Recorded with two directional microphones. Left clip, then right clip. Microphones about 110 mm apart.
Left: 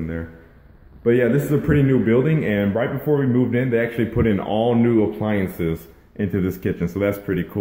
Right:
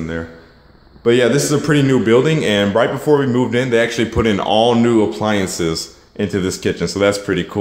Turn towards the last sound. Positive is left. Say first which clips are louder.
# right 7 dB
turn(degrees=-25)  # may be behind; listen again after turning